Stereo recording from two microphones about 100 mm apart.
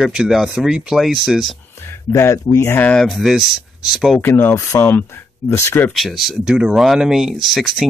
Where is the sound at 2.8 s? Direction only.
10° left (ahead or behind).